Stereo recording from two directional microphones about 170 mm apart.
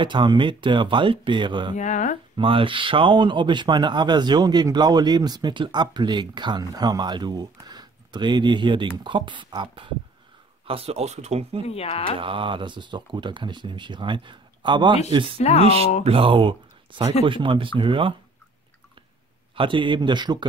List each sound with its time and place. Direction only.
0.0 s speech: 30° right (ahead or behind)
1.8 s speech: 45° left (ahead or behind)
2.3 s speech: 30° right (ahead or behind)
11.6 s speech: 35° left (ahead or behind)
12.2 s speech: 30° right (ahead or behind)
15.3 s speech: 40° left (ahead or behind)
16.0 s speech: 35° right (ahead or behind)
19.5 s speech: 30° right (ahead or behind)